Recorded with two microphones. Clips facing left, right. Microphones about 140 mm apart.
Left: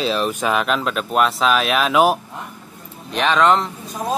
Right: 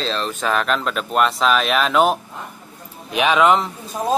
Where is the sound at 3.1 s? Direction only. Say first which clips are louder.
Right 1 dB; 5° right (ahead or behind).